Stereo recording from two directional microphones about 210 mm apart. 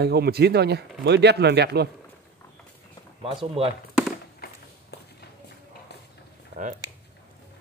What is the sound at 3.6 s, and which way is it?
Speech, 25° right (ahead or behind).